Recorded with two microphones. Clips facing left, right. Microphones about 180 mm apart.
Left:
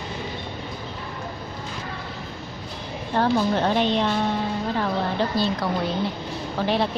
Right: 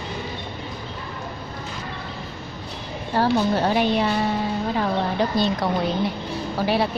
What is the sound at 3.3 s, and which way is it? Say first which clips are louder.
A woman's voice: right 1 dB; 10° right (ahead or behind).